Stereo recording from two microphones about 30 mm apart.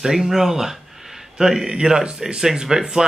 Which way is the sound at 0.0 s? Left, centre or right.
Centre.